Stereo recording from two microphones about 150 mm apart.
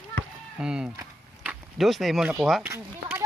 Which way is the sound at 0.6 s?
5° right (ahead or behind).